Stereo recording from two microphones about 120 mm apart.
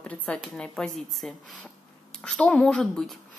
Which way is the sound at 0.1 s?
10° left (ahead or behind).